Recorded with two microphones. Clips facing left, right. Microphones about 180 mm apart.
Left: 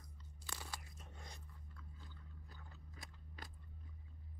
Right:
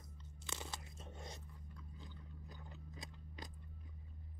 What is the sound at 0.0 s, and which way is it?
Crunch, 20° right (ahead or behind).